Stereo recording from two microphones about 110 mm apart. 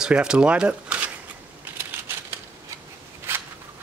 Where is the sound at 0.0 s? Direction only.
5° right (ahead or behind).